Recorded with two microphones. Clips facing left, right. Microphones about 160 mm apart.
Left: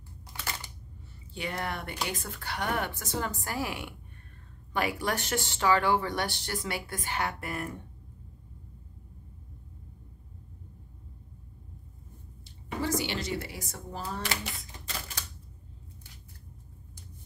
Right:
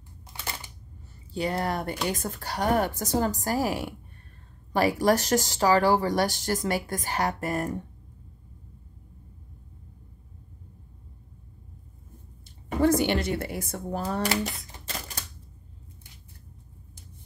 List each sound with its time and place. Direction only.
1.3 s speech: 35° right (ahead or behind)
12.4 s a sound: 55° right (ahead or behind)
14.2 s speech: 40° right (ahead or behind)